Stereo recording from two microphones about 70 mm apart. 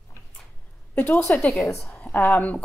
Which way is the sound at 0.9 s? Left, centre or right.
Left.